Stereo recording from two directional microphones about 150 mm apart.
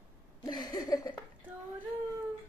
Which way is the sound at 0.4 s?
30° left (ahead or behind).